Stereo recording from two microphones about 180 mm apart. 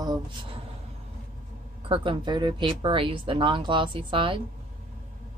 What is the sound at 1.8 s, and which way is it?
Speech, 30° right (ahead or behind).